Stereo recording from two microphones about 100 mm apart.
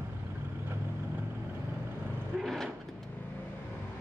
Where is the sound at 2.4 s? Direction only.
Centre (ahead or behind).